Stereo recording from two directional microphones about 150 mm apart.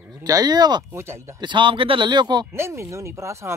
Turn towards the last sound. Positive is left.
turn(degrees=-20)  # may be behind; listen again after turning